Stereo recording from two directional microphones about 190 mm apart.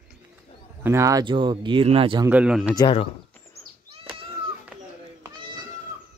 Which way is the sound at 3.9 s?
30° right (ahead or behind).